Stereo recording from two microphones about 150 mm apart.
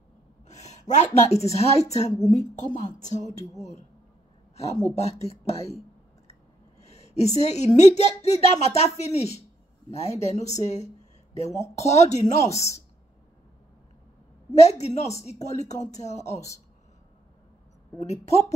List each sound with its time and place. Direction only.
0.5 s speech: 50° left (ahead or behind)
4.9 s speech: 45° left (ahead or behind)
5.5 s a sound: 45° left (ahead or behind)
6.8 s speech: 45° left (ahead or behind)
14.5 s speech: 45° left (ahead or behind)
17.9 s speech: 45° left (ahead or behind)